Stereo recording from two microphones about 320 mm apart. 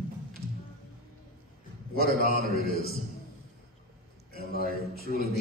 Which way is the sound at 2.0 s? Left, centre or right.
Left.